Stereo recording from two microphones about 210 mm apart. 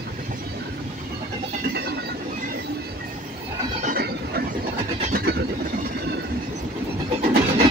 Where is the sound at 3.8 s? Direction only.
40° right (ahead or behind).